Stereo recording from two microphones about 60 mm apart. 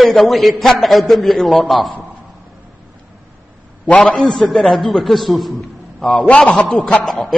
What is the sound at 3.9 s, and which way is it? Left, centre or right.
A man's voice, centre.